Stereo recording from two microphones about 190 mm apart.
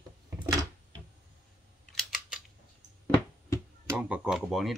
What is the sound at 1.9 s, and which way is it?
Scissors, centre (ahead or behind).